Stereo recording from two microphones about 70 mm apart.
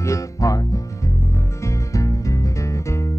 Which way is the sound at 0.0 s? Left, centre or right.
Left.